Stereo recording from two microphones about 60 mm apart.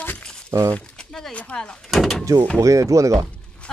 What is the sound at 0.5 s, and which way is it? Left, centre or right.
Speech, right.